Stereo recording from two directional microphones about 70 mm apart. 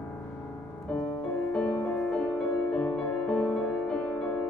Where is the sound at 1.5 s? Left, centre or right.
Centre.